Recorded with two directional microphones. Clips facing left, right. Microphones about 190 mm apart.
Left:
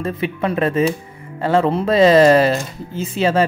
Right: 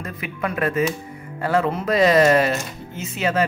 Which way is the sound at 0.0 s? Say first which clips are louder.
Left 7 dB; 30° left (ahead or behind).